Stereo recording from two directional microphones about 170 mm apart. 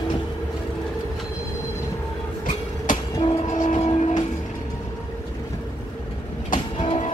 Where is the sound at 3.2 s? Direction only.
45° left (ahead or behind).